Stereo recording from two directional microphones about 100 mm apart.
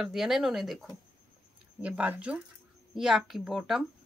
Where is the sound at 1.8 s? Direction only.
15° right (ahead or behind).